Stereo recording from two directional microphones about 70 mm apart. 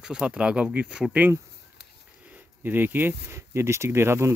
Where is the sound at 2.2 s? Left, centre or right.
Right.